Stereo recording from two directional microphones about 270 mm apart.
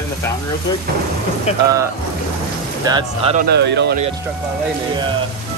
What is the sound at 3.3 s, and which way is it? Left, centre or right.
Speech, right.